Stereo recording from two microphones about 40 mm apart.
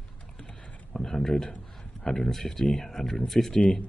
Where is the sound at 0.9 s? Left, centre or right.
Centre.